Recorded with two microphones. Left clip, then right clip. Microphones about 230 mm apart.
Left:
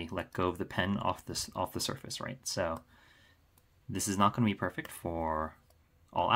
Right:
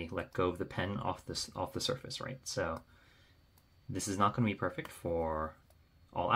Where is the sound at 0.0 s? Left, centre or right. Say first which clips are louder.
Left 1 dB; left.